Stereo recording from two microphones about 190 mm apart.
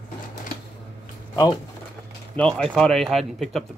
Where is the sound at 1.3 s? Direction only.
20° left (ahead or behind).